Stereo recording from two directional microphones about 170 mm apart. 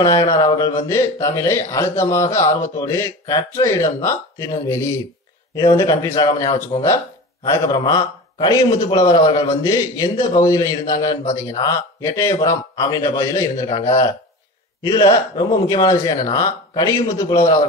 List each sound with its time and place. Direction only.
0.0 s a man's voice: 20° left (ahead or behind)